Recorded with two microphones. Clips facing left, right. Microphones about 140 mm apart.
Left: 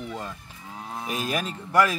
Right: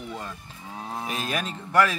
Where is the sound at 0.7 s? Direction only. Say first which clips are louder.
Right 2 dB; 20° right (ahead or behind).